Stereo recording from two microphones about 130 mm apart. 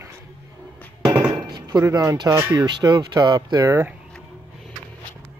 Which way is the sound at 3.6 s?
15° right (ahead or behind).